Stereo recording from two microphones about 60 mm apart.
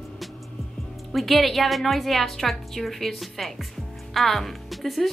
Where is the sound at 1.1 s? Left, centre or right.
Centre.